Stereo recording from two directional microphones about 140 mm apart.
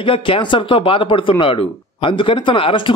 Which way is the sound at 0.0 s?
40° left (ahead or behind).